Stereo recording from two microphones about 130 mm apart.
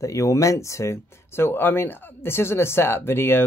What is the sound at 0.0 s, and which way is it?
Speech, 25° left (ahead or behind).